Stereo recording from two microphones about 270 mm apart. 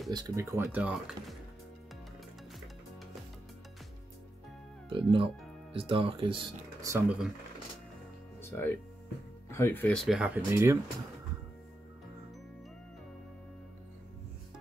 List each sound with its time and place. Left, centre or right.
0.1 s speech: centre
4.8 s speech: centre
8.4 s music: centre
9.5 s speech: centre